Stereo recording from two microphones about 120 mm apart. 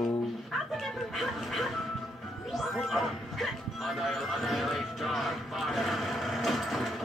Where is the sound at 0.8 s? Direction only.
Centre (ahead or behind).